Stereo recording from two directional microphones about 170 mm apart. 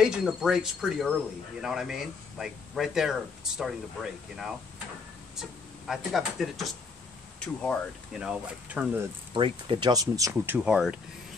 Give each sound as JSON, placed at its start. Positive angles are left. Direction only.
{"t": 0.0, "sound": "speech", "side_deg": -5}
{"t": 9.3, "sound": "speech", "side_deg": -30}